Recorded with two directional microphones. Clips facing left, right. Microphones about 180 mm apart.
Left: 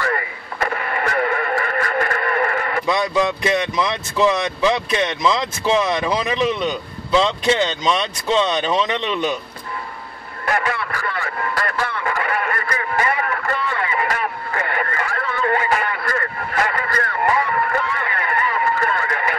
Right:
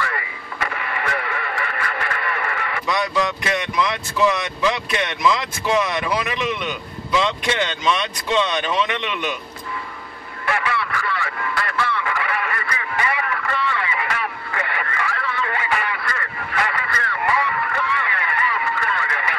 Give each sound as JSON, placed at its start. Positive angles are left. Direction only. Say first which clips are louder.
{"t": 0.0, "sound": "radio", "louder": "left 5 dB", "side_deg": 45}
{"t": 2.9, "sound": "speech", "louder": "left 2 dB", "side_deg": 20}
{"t": 10.4, "sound": "radio", "louder": "left 2 dB", "side_deg": 40}